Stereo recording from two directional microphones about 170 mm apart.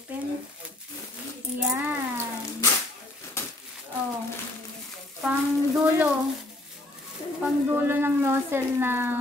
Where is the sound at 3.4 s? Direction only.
15° left (ahead or behind).